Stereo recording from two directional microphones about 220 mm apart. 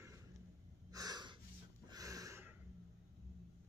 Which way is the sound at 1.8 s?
15° right (ahead or behind).